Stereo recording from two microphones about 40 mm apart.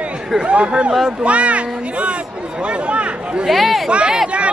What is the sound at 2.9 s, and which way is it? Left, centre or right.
Chatter, right.